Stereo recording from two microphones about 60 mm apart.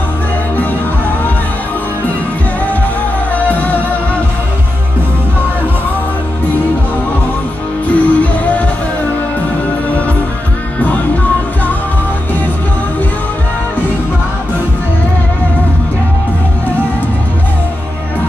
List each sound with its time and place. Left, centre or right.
3.3 s music: left
7.9 s music: left